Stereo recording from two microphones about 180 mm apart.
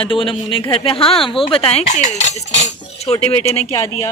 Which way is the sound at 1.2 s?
30° left (ahead or behind).